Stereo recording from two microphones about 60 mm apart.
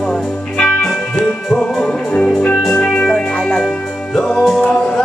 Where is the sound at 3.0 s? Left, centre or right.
Centre.